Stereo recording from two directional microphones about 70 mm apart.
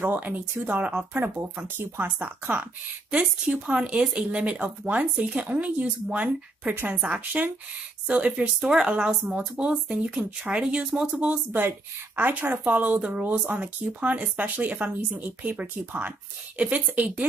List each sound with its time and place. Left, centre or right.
0.0 s speech: right
6.7 s speech: right
7.4 s speech: centre